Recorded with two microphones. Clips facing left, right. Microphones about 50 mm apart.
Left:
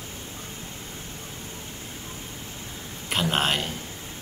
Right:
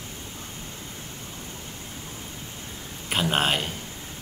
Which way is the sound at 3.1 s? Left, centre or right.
Centre.